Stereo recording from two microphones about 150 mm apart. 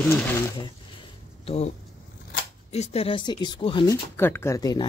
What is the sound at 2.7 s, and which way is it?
Speech, 45° left (ahead or behind).